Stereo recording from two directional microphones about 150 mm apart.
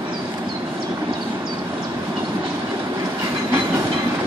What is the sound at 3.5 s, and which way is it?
Train, 20° right (ahead or behind).